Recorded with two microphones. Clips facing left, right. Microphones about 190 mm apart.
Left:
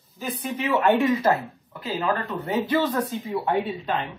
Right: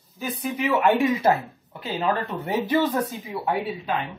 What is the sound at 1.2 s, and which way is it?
Speech, 25° right (ahead or behind).